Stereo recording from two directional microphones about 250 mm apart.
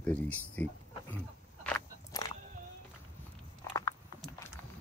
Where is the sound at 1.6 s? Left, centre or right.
Centre.